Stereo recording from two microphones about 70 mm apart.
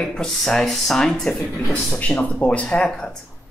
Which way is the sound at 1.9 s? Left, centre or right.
Left.